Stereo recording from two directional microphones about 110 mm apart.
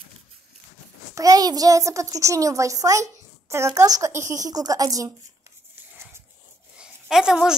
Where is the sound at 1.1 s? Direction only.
35° right (ahead or behind).